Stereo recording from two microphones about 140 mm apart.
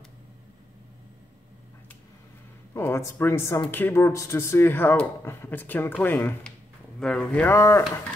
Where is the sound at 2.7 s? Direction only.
20° left (ahead or behind).